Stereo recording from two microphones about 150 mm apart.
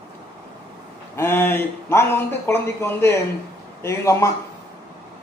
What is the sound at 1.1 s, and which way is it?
A man's voice, 15° left (ahead or behind).